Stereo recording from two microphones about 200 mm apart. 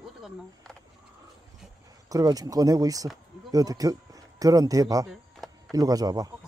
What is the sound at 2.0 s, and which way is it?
Speech, 20° right (ahead or behind).